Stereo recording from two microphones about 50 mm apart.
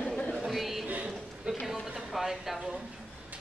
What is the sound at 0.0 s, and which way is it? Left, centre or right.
Chatter, left.